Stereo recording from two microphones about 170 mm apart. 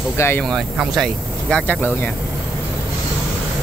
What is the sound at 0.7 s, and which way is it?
Speech, centre (ahead or behind).